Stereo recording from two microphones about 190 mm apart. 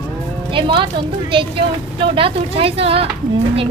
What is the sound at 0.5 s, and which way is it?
A woman's voice, 25° right (ahead or behind).